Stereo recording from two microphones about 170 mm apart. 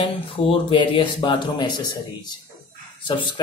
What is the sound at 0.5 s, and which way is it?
Speech, 30° left (ahead or behind).